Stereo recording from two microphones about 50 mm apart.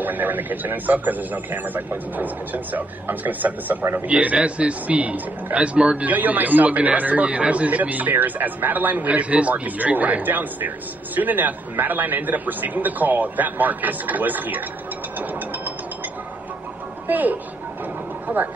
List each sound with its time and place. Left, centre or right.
0.0 s a man's voice: right
6.0 s a man's voice: right
17.1 s a man's voice: right